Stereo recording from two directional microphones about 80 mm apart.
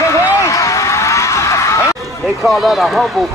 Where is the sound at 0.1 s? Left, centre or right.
Left.